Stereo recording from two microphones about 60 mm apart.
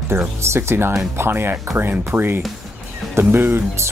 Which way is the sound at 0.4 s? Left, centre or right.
Right.